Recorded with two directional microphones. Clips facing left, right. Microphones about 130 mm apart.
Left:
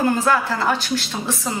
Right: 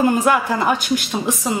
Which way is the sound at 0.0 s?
15° right (ahead or behind).